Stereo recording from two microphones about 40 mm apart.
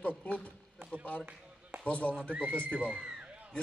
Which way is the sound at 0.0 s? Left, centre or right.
Left.